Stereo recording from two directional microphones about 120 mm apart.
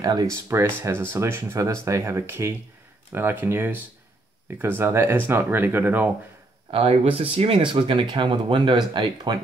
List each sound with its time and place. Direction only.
0.0 s speech: 35° right (ahead or behind)
0.3 s speech: 20° right (ahead or behind)
6.7 s speech: 50° right (ahead or behind)